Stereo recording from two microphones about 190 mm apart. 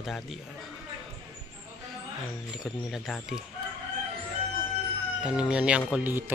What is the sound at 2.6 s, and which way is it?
Speech, centre (ahead or behind).